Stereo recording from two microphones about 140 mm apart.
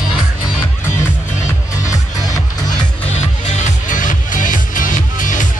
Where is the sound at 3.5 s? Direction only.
65° left (ahead or behind).